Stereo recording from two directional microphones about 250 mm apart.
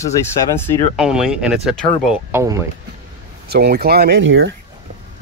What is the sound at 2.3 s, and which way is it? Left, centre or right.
Speech, centre.